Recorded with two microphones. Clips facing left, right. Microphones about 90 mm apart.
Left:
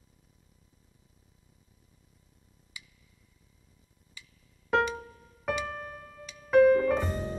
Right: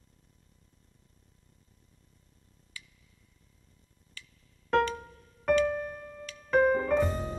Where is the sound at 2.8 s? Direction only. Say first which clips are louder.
Right 1 dB; 15° left (ahead or behind).